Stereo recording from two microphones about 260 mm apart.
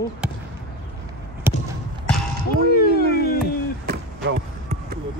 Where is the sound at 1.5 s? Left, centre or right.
Centre.